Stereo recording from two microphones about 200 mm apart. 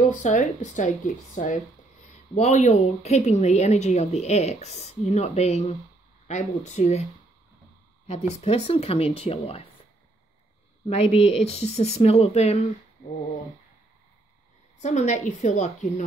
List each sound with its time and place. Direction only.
0.0 s speech: 40° left (ahead or behind)
8.1 s speech: 30° left (ahead or behind)
10.9 s speech: 30° left (ahead or behind)
14.8 s speech: 35° left (ahead or behind)